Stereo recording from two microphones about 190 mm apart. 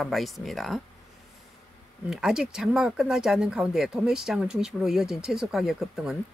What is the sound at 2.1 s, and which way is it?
Speech, 5° right (ahead or behind).